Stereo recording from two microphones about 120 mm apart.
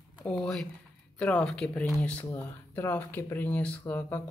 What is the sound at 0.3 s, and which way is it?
Speech, 5° left (ahead or behind).